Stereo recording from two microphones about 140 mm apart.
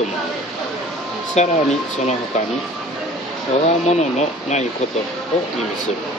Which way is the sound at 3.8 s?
55° left (ahead or behind).